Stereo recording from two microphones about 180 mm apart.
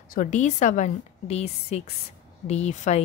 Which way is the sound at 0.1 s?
45° left (ahead or behind).